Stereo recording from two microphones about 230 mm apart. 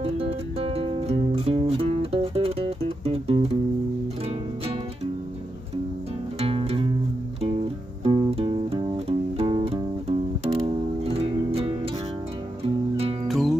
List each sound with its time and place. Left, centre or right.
0.0 s music: right
6.4 s music: right
8.0 s music: right
13.3 s music: centre